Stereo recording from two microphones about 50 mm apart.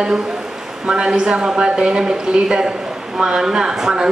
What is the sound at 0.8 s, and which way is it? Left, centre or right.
Speech, centre.